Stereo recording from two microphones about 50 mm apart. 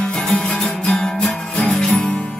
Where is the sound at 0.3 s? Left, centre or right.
Centre.